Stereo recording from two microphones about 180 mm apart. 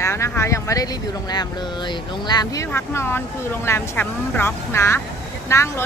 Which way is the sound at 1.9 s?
20° left (ahead or behind).